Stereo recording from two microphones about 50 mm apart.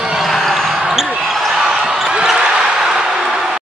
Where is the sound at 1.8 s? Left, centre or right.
Centre.